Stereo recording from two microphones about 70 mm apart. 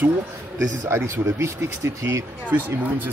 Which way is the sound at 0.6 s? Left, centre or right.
Right.